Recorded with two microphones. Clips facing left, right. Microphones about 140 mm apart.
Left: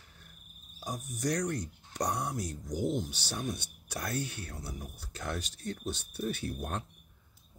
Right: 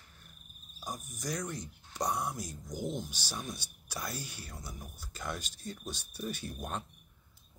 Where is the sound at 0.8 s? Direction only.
70° left (ahead or behind).